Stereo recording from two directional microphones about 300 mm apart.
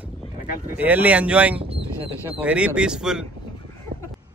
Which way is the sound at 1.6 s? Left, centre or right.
Centre.